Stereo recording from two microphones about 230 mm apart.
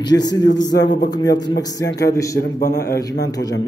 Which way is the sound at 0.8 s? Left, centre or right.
Left.